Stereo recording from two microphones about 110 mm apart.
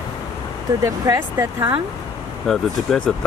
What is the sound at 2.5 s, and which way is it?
Speech, 5° left (ahead or behind).